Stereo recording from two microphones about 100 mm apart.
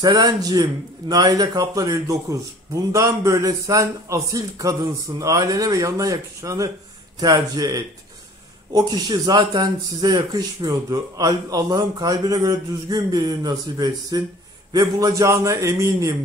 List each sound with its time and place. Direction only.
0.0 s speech: 40° right (ahead or behind)